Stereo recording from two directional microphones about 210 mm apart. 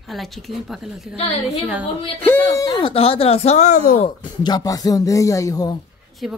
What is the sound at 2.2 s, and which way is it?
Speech, 10° left (ahead or behind).